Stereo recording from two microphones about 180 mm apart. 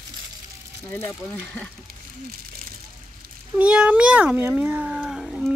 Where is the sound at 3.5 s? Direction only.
5° right (ahead or behind).